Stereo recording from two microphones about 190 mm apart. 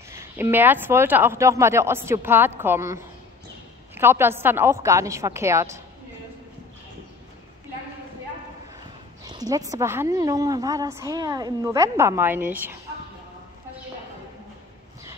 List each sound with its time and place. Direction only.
0.1 s a woman's voice: 15° right (ahead or behind)
9.2 s a woman's voice: 20° right (ahead or behind)